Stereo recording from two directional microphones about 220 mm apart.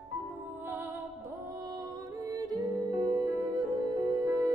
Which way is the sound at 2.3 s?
15° right (ahead or behind).